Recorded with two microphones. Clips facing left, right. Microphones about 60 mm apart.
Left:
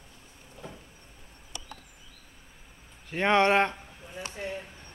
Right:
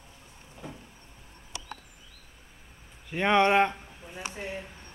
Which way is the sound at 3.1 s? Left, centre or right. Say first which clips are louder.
Even; centre.